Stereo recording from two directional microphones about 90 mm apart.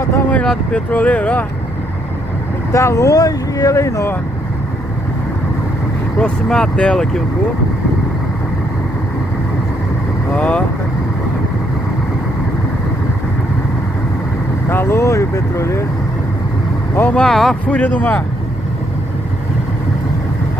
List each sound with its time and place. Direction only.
0.3 s speech: 10° left (ahead or behind)
2.7 s speech: 35° left (ahead or behind)
6.2 s speech: 10° left (ahead or behind)
10.3 s speech: 10° left (ahead or behind)
14.7 s speech: 25° left (ahead or behind)
17.1 s speech: 5° left (ahead or behind)
17.6 s speech: 20° left (ahead or behind)